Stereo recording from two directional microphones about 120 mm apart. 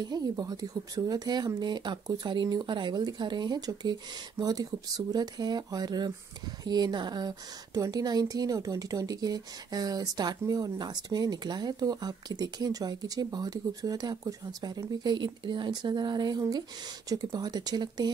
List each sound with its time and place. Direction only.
0.0 s speech: 35° right (ahead or behind)